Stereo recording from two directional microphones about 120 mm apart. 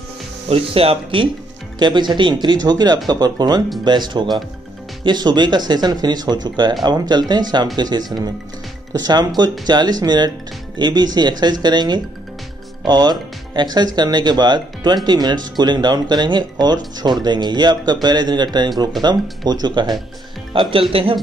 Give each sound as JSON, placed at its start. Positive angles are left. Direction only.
{"t": 0.5, "sound": "speech", "side_deg": -55}
{"t": 1.8, "sound": "speech", "side_deg": -40}
{"t": 20.5, "sound": "speech", "side_deg": -50}